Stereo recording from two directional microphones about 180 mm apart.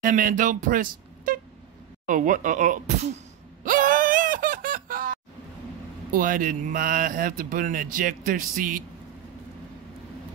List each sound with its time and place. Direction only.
0.0 s speech: 50° right (ahead or behind)
3.6 s a sound: 50° right (ahead or behind)
6.1 s speech: 50° right (ahead or behind)